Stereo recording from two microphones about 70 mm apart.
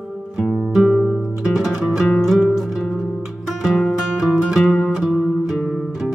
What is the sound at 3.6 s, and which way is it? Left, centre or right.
Music, centre.